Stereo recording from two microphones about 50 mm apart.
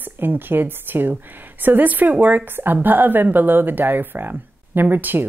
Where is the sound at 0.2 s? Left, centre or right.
Right.